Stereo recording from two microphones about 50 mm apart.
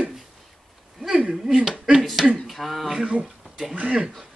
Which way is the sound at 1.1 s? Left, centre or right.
Right.